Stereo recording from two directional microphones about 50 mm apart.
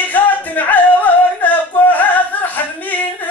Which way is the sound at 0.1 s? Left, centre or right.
Left.